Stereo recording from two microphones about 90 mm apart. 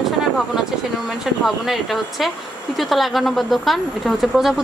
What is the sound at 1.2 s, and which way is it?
A woman's voice, centre (ahead or behind).